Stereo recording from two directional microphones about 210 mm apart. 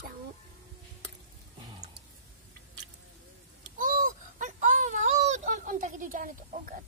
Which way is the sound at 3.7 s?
40° right (ahead or behind).